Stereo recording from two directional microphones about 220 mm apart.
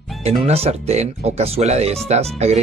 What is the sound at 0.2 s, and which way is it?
Speech, 25° right (ahead or behind).